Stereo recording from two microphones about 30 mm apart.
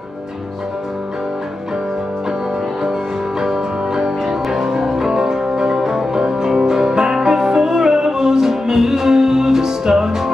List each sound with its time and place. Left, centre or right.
3.3 s music: centre